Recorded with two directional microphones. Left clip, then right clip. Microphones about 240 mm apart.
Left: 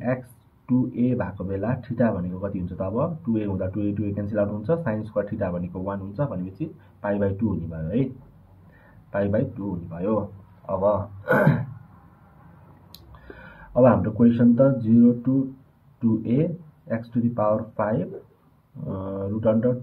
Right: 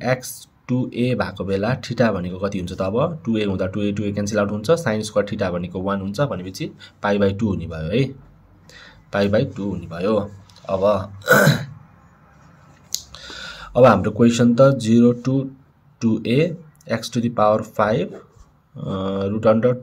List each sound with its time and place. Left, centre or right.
0.7 s speech: right
9.1 s speech: right
13.5 s speech: right